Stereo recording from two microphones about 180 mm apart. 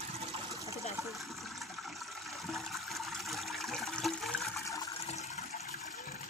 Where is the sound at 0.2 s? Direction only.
35° right (ahead or behind).